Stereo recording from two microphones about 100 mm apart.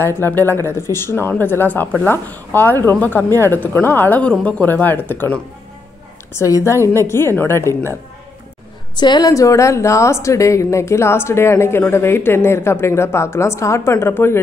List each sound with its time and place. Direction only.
0.0 s a woman's voice: 20° left (ahead or behind)
6.3 s a woman's voice: 30° left (ahead or behind)
8.9 s a woman's voice: 45° left (ahead or behind)
9.3 s a woman's voice: 30° left (ahead or behind)